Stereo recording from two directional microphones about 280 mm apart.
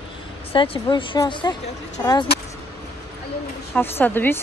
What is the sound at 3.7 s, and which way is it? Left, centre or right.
Speech, centre.